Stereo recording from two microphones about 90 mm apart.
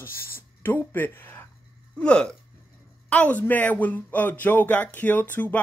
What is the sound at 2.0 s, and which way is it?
Speech, 10° left (ahead or behind).